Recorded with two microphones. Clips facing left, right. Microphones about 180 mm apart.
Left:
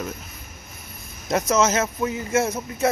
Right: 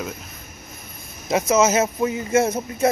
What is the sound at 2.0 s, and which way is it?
Speech, 20° right (ahead or behind).